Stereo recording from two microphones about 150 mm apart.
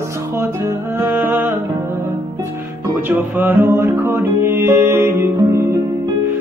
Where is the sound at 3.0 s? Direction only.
15° right (ahead or behind).